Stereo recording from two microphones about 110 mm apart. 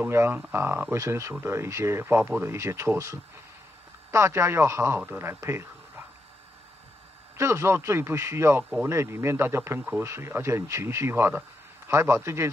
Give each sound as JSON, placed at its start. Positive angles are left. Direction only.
{"t": 0.0, "sound": "speech", "side_deg": -20}
{"t": 7.3, "sound": "speech", "side_deg": -25}